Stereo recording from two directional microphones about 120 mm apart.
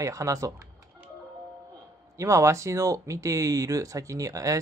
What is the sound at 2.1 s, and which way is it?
Speech, 25° right (ahead or behind).